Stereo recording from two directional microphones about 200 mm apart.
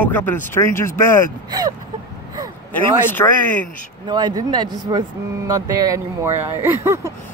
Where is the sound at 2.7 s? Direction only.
10° left (ahead or behind).